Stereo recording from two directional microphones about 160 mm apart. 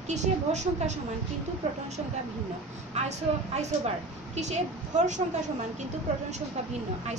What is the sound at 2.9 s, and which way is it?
A woman's voice, 45° right (ahead or behind).